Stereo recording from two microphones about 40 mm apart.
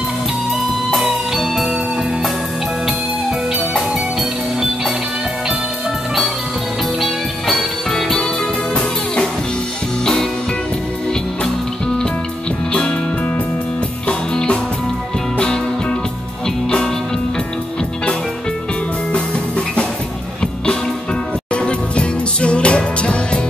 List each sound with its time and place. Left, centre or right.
0.9 s music: centre
7.0 s music: centre
8.7 s music: left
14.0 s music: left
21.5 s music: left